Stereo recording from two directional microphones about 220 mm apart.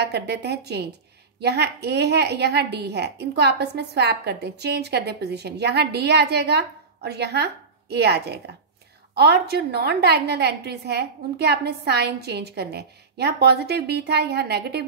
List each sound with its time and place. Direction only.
0.0 s a woman's voice: 50° right (ahead or behind)